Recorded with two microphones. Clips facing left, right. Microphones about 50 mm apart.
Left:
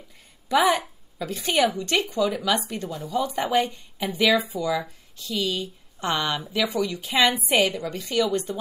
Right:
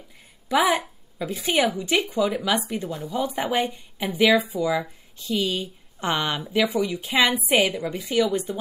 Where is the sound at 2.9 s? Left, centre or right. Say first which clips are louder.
Right 1 dB; right.